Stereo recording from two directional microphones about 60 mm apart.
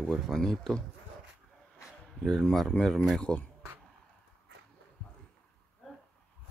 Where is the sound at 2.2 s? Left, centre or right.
Centre.